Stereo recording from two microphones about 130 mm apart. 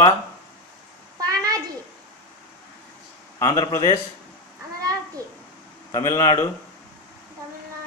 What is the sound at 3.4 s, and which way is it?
Speech, 30° left (ahead or behind).